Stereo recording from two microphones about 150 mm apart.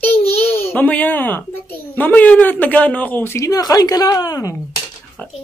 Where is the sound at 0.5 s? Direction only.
10° left (ahead or behind).